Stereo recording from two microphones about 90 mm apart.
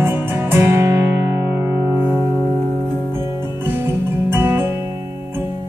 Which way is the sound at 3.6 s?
25° right (ahead or behind).